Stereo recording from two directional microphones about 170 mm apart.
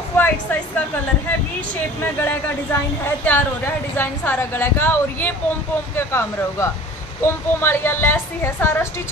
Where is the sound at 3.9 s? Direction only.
10° left (ahead or behind).